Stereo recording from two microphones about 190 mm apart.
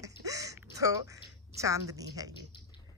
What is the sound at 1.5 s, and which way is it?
Speech, 15° right (ahead or behind).